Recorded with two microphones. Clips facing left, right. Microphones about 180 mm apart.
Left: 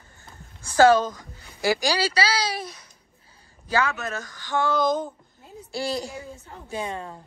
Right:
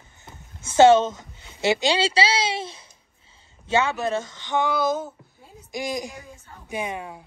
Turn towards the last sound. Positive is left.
turn(degrees=-10)  # may be behind; listen again after turning